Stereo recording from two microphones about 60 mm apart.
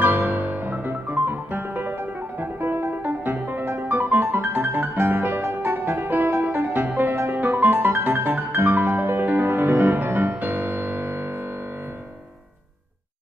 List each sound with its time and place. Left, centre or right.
0.0 s music: right